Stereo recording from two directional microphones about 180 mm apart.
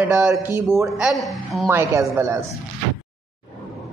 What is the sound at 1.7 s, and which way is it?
Speech, 15° right (ahead or behind).